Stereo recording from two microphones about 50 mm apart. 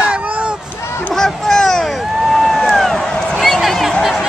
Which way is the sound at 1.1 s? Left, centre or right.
Centre.